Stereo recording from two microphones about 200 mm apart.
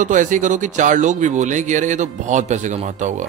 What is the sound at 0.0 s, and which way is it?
A man's voice, 40° right (ahead or behind).